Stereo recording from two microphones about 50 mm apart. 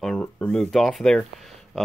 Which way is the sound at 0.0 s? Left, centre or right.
Centre.